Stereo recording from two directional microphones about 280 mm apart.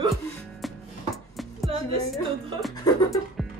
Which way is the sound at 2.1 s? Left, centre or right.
Centre.